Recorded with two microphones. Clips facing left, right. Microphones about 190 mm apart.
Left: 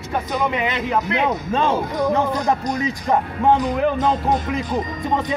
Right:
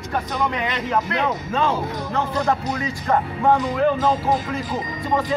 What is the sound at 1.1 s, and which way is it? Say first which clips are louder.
Speech: left 3 dB; 20° left (ahead or behind).